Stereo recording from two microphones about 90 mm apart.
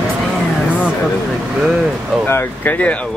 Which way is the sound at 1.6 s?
Centre (ahead or behind).